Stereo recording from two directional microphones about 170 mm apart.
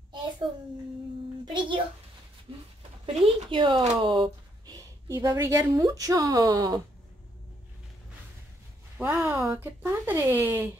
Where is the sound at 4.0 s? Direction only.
25° right (ahead or behind).